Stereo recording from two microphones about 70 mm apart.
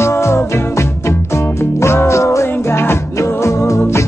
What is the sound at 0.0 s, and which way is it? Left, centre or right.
Music, left.